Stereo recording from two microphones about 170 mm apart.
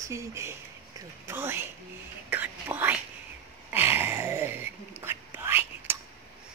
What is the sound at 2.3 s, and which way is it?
Whispering, 10° right (ahead or behind).